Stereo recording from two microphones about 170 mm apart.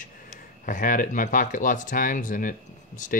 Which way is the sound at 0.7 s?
50° left (ahead or behind).